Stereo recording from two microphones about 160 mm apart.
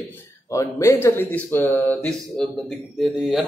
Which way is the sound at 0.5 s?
20° left (ahead or behind).